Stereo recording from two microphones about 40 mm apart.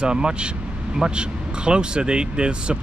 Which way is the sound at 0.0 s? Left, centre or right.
Right.